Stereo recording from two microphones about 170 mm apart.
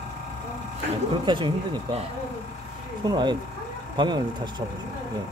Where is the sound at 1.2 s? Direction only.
30° right (ahead or behind).